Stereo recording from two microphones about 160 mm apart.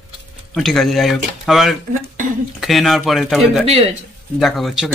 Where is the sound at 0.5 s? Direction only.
Centre (ahead or behind).